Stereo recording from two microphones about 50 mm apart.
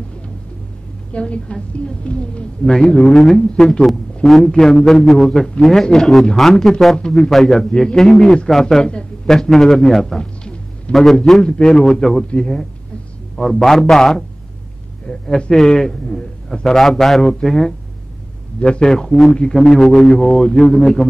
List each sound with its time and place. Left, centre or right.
1.1 s a woman's voice: centre
2.6 s a man's voice: centre
10.9 s a man's voice: centre
11.4 s a man's voice: centre